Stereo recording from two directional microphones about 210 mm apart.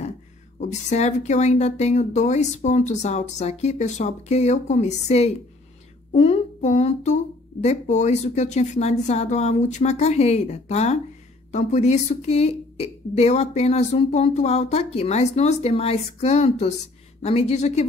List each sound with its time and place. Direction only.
0.6 s a woman's voice: 35° left (ahead or behind)